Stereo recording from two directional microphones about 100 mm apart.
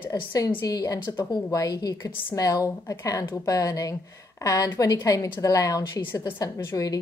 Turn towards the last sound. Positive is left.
turn(degrees=35)  # may be behind; listen again after turning